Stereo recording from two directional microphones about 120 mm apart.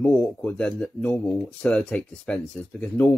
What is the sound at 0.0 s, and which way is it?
Speech, 10° left (ahead or behind).